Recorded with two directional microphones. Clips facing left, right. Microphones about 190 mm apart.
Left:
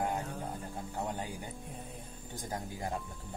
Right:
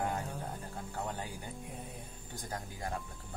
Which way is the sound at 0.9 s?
15° left (ahead or behind).